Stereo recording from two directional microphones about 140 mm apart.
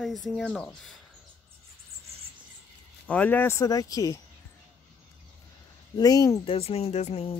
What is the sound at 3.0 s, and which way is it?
Speech, 10° left (ahead or behind).